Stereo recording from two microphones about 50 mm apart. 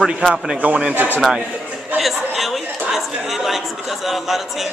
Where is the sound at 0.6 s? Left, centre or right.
Right.